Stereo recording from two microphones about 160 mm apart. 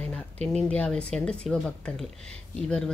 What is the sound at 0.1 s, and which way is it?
A woman's voice, 5° left (ahead or behind).